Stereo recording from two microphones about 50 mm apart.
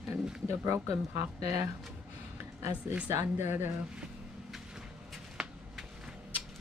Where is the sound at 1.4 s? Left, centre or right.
Right.